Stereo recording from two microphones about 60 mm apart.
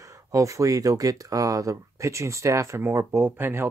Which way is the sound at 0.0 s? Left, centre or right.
Right.